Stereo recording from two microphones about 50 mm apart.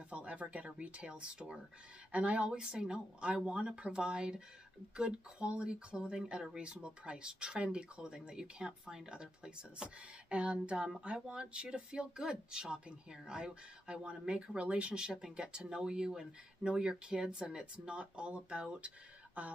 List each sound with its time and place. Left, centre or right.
0.1 s speech: right